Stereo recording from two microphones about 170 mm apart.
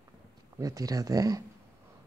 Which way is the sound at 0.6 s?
20° right (ahead or behind).